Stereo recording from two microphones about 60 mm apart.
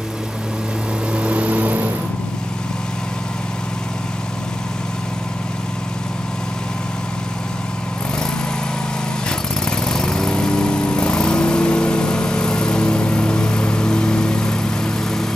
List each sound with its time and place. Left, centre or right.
1.1 s vehicle: centre
9.7 s lawn mower: centre